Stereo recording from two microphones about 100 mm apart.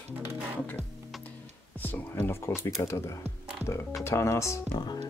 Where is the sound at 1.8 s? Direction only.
20° left (ahead or behind).